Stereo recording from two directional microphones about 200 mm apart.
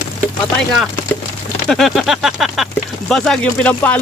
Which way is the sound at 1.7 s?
Centre (ahead or behind).